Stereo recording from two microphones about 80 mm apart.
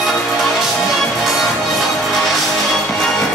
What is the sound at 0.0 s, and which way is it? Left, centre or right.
Music, centre.